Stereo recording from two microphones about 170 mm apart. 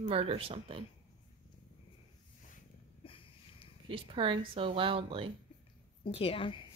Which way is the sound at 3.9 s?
30° right (ahead or behind).